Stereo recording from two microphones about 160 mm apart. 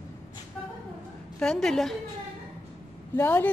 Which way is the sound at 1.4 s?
5° left (ahead or behind).